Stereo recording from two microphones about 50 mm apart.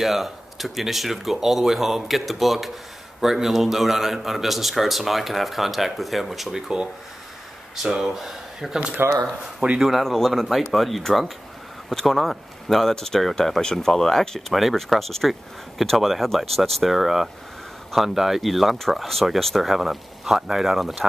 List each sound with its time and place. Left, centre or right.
0.0 s a man's voice: centre
7.7 s a man's voice: centre
14.5 s a man's voice: centre